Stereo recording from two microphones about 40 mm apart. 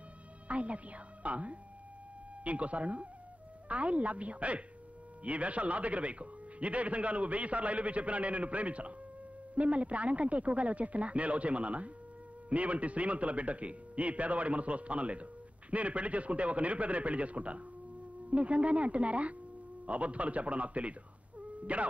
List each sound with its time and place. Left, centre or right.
0.5 s speech: right
21.4 s whimper: right